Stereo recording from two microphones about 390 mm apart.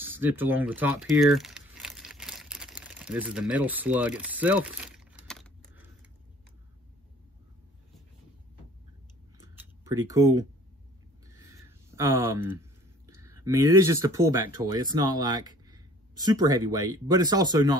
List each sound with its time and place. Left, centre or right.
0.0 s crumpling: centre
9.4 s a sound: centre
13.0 s speech: centre